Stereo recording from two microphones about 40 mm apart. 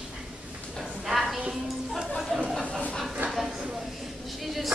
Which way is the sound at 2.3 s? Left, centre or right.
Centre.